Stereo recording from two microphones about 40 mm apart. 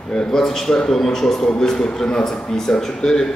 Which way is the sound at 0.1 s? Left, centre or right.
Centre.